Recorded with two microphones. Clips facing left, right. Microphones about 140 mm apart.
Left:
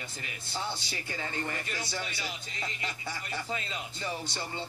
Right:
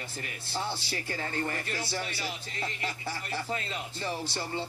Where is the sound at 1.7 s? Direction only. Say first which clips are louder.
Right 2 dB; 30° right (ahead or behind).